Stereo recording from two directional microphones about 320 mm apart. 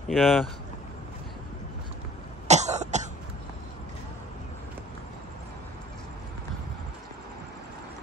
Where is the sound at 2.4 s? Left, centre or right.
Right.